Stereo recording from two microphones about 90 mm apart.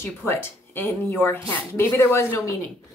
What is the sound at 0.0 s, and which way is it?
A woman's voice, 25° left (ahead or behind).